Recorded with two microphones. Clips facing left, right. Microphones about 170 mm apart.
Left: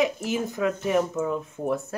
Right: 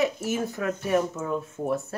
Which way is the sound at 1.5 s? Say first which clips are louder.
Left 1 dB; 15° left (ahead or behind).